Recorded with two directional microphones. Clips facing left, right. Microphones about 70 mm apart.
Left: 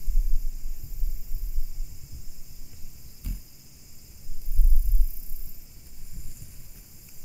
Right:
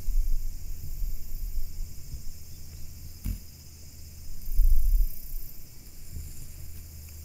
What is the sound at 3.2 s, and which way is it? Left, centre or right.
Cricket, centre.